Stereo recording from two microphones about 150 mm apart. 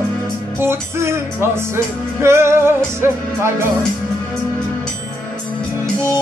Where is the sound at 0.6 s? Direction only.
15° right (ahead or behind).